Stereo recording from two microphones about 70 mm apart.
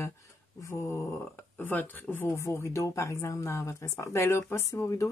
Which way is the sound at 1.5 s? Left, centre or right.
Left.